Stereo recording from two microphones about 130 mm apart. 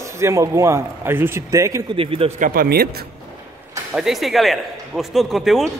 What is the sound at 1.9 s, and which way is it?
Speech, 45° right (ahead or behind).